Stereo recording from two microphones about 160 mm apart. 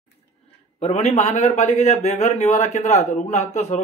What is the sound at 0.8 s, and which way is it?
A man's voice, 45° left (ahead or behind).